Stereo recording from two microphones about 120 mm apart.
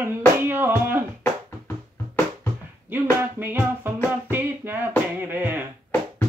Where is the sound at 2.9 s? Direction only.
15° right (ahead or behind).